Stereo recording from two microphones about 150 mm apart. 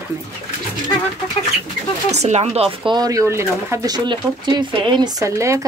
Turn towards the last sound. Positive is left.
turn(degrees=-20)  # may be behind; listen again after turning